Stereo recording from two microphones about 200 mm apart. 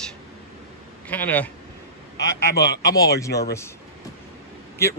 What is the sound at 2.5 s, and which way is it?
Speech, 55° left (ahead or behind).